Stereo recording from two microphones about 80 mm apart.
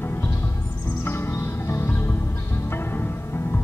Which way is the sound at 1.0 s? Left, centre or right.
Left.